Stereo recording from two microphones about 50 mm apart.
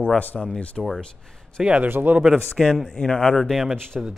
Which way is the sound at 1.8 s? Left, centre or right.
Right.